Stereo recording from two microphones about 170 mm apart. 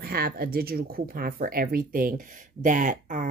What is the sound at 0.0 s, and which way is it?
Speech, 65° right (ahead or behind).